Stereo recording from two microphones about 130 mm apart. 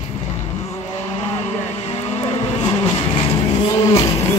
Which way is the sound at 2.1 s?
50° left (ahead or behind).